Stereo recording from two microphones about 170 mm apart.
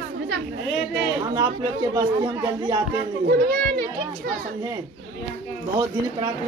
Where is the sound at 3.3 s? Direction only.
65° right (ahead or behind).